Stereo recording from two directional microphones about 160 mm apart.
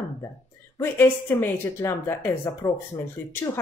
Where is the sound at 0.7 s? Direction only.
15° left (ahead or behind).